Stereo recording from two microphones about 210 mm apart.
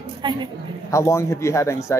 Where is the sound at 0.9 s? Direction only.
15° left (ahead or behind).